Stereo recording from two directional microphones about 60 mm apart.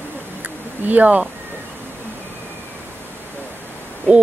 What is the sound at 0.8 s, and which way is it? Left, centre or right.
Speech, right.